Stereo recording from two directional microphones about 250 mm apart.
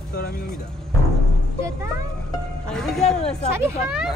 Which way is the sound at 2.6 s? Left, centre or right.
Centre.